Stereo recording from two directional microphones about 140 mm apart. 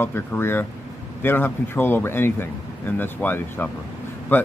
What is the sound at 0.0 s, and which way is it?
Speech, 15° left (ahead or behind).